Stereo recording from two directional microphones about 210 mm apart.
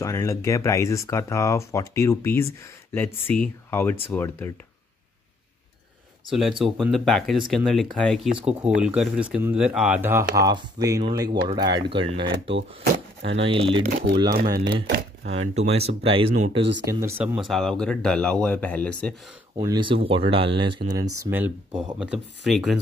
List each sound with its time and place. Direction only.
0.0 s speech: 15° left (ahead or behind)
6.3 s speech: centre (ahead or behind); by 12.5 s 25° right (ahead or behind)
13.2 s speech: 60° right (ahead or behind)
13.5 s speech: 25° right (ahead or behind)
13.8 s speech: 40° right (ahead or behind)
15.6 s speech: 30° right (ahead or behind)
16.9 s speech: 15° right (ahead or behind); by 19.1 s 5° left (ahead or behind)
19.5 s speech: 20° right (ahead or behind); by 22.8 s centre (ahead or behind)